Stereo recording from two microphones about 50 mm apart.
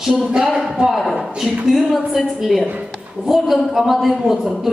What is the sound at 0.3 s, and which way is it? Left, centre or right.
A woman's voice, centre.